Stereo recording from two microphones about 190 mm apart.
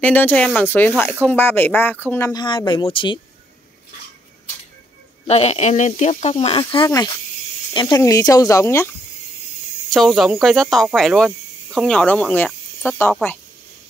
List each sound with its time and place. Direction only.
0.0 s speech: 10° left (ahead or behind); by 3.2 s 25° left (ahead or behind)
5.2 s speech: 35° left (ahead or behind); by 8.9 s 15° left (ahead or behind)
9.8 s speech: centre (ahead or behind)